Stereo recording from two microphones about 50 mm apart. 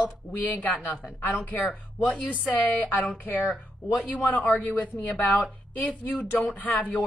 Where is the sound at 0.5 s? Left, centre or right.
Left.